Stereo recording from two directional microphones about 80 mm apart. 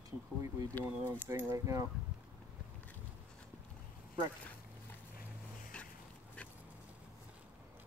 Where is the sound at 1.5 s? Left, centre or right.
Right.